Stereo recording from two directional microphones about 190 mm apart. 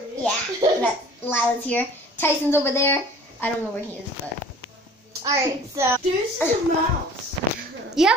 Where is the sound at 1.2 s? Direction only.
10° left (ahead or behind).